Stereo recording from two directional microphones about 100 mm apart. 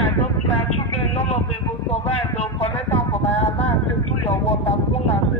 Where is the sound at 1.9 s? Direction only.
90° left.